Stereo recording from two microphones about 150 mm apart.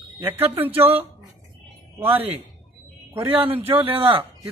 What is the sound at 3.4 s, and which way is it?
Speech, 35° right (ahead or behind).